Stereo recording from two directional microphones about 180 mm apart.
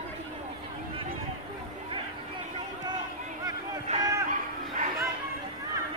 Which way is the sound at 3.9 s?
40° right (ahead or behind).